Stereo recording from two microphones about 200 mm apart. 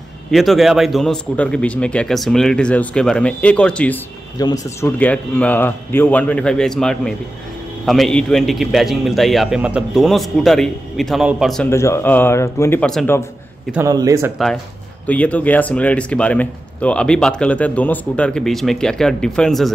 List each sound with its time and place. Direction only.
0.3 s speech: centre (ahead or behind)
4.4 s speech: 15° left (ahead or behind); by 11.7 s centre (ahead or behind)
11.7 s speech: 15° left (ahead or behind)
13.7 s a man's voice: 15° right (ahead or behind)
15.0 s speech: 5° left (ahead or behind)